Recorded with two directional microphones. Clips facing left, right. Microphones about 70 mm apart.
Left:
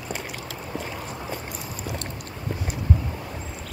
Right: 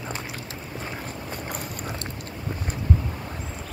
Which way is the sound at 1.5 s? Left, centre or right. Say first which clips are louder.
Right 1 dB; right.